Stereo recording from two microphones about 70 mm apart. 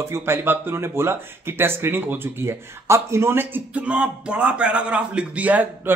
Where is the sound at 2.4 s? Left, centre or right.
Right.